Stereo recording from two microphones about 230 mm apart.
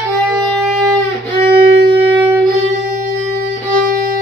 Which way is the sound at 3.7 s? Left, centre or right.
Right.